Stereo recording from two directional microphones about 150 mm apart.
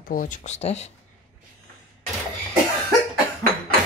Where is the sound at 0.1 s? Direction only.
60° left (ahead or behind).